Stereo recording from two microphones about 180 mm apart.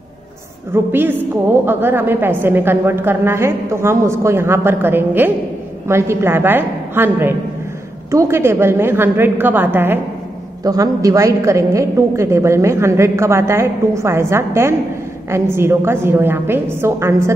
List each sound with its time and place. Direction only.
0.7 s a woman's voice: 15° right (ahead or behind)